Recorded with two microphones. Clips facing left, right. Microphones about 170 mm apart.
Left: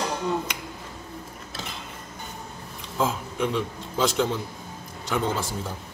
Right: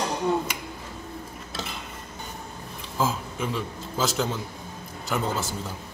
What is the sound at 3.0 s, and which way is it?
A man's voice, 5° right (ahead or behind).